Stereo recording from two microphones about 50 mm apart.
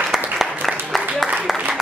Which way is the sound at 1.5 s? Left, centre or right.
Centre.